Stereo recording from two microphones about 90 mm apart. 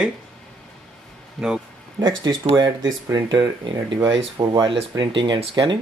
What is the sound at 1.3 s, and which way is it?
Speech, 10° right (ahead or behind).